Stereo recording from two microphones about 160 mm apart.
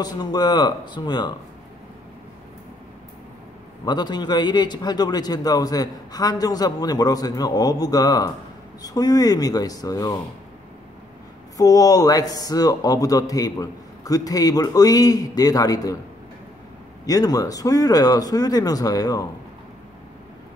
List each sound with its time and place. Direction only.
0.0 s a man's voice: 25° left (ahead or behind)
3.8 s a man's voice: 25° left (ahead or behind)
11.5 s a man's voice: 20° left (ahead or behind)
17.0 s a man's voice: 20° left (ahead or behind)